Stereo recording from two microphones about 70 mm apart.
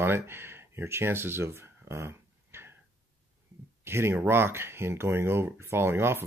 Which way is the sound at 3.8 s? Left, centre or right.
Right.